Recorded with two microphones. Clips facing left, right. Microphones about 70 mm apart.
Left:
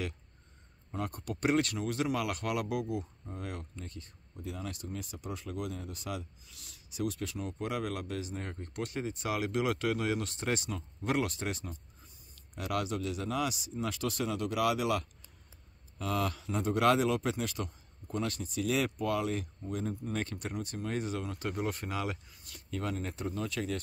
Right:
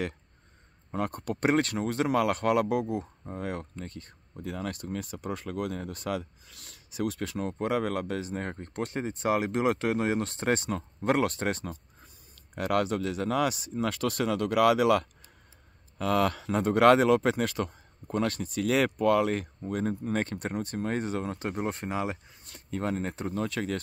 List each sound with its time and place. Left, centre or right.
0.9 s speech: right